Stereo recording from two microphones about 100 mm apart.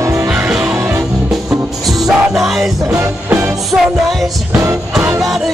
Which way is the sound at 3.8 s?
Centre (ahead or behind).